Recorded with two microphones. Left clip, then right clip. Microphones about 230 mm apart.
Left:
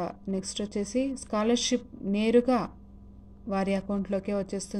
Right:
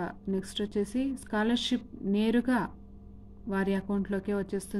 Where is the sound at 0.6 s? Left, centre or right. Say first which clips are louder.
Left 3 dB; right.